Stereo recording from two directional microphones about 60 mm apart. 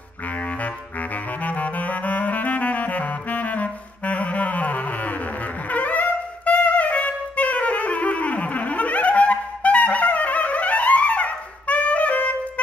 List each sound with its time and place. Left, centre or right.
1.4 s saxophone: left
5.7 s music: left